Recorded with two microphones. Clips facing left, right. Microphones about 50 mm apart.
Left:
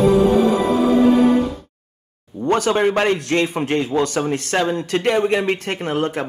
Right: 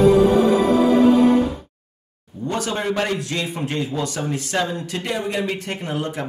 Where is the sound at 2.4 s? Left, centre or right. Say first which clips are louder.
Left 7 dB; left.